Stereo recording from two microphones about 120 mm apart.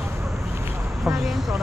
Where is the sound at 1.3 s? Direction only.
Centre (ahead or behind).